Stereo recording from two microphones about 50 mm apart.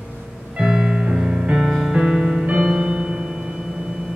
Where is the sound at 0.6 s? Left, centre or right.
Centre.